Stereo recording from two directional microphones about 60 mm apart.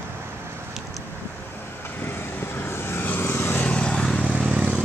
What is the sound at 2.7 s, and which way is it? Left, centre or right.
Vehicle, left.